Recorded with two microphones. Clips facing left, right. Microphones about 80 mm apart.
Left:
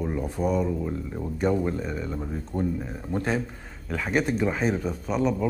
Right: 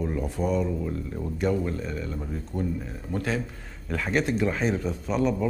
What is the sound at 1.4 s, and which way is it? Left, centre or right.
Speech, left.